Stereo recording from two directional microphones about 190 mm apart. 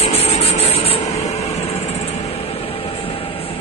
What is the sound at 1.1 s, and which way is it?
Vehicle, 35° left (ahead or behind).